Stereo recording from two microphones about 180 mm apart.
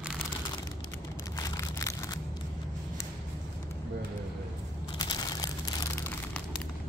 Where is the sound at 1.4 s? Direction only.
20° left (ahead or behind).